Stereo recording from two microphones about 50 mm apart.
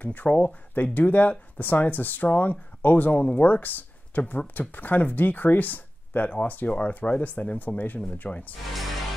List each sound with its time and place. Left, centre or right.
0.0 s speech: left